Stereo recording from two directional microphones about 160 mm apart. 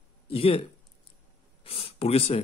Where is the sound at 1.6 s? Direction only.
40° left (ahead or behind).